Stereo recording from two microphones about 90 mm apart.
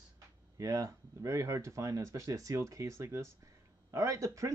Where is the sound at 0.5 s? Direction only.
40° right (ahead or behind).